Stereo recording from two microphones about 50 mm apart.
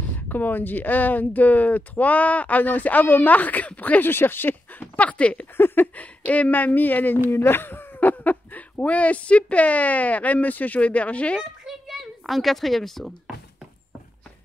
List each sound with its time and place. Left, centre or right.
0.1 s speech: left
4.0 s speech: left
4.9 s speech: left
5.6 s speech: left
7.2 s speech: left
11.6 s a sound: centre